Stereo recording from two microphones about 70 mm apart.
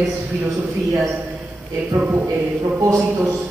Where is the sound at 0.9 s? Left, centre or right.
Right.